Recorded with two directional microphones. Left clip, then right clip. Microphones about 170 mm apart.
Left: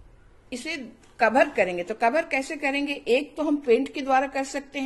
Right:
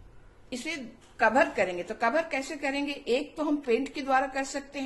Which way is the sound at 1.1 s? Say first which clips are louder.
Left 3 dB; 40° left (ahead or behind).